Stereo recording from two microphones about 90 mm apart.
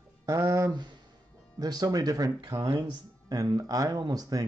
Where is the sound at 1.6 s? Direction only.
45° right (ahead or behind).